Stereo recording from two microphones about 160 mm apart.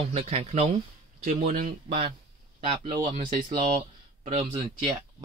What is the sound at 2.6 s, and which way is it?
Speech, 35° right (ahead or behind).